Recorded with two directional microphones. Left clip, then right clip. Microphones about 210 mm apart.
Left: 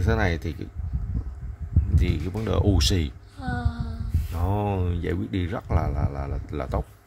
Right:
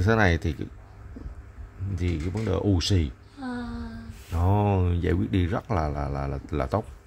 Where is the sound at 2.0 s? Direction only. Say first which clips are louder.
Right 1 dB; 10° left (ahead or behind).